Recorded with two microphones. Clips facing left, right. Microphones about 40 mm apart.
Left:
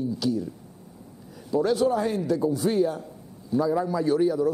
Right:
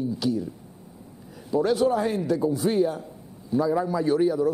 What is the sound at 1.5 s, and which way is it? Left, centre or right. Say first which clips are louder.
A man's voice: right 1 dB; centre.